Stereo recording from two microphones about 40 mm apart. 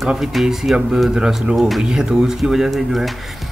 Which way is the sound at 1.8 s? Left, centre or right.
Centre.